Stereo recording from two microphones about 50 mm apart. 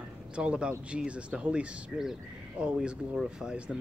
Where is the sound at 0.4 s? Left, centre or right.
Centre.